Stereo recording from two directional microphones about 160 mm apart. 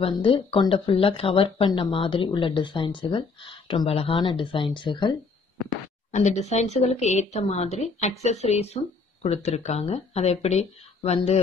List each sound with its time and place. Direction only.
0.0 s speech: 35° left (ahead or behind)
6.1 s a woman's voice: 45° left (ahead or behind)